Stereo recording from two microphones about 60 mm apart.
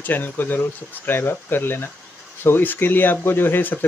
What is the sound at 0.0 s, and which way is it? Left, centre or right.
Speech, left.